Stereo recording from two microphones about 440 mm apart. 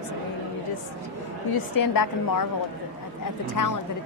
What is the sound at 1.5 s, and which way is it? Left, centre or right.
Speech, left.